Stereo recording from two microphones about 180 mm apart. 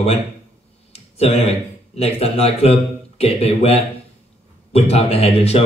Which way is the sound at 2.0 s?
35° left (ahead or behind).